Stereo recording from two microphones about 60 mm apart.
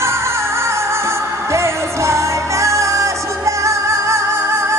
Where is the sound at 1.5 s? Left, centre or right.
Right.